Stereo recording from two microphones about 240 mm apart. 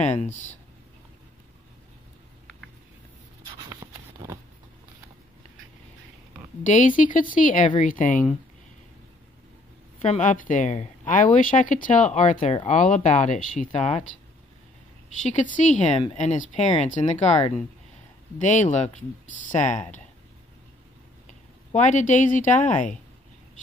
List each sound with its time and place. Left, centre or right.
3.6 s a sound: centre
6.6 s speech: left
9.9 s speech: left
15.2 s speech: left
21.3 s speech: left